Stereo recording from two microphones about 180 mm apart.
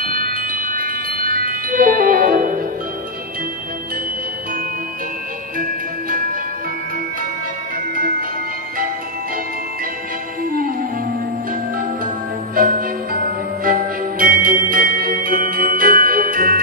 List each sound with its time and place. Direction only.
0.0 s chime: 55° right (ahead or behind)
5.6 s music: 50° right (ahead or behind)
10.4 s music: 55° right (ahead or behind)
12.5 s music: 50° right (ahead or behind)